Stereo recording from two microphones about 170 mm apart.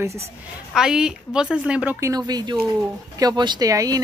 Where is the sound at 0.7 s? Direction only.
5° right (ahead or behind).